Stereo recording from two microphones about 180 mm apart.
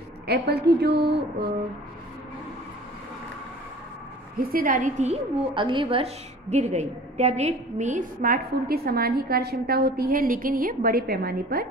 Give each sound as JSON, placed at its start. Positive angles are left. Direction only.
{"t": 0.3, "sound": "a woman's voice", "side_deg": -60}
{"t": 4.4, "sound": "a woman's voice", "side_deg": -55}